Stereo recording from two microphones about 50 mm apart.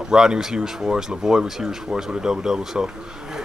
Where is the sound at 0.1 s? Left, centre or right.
Centre.